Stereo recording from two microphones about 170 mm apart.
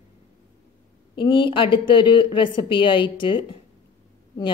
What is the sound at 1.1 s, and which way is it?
Speech, 30° left (ahead or behind).